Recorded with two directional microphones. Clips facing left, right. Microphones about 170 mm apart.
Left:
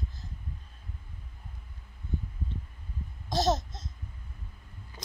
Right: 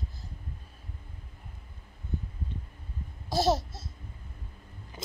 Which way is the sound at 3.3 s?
10° right (ahead or behind).